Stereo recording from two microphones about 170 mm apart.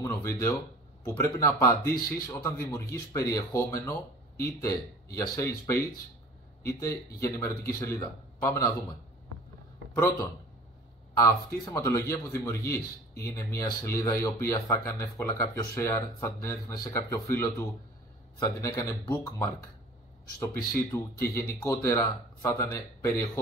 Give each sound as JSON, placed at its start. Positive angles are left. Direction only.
{"t": 0.0, "sound": "speech", "side_deg": 15}
{"t": 9.9, "sound": "speech", "side_deg": 20}
{"t": 20.9, "sound": "speech", "side_deg": 15}